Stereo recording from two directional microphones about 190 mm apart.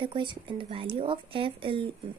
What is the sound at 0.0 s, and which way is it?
Speech, 25° right (ahead or behind).